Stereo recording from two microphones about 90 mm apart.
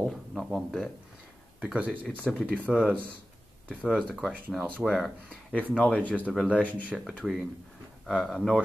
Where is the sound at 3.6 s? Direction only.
5° right (ahead or behind).